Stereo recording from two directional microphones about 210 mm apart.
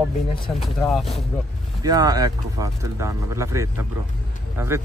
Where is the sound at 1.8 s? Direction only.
20° right (ahead or behind).